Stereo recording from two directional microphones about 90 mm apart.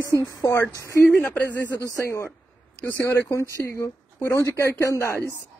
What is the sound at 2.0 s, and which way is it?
Speech, 30° left (ahead or behind).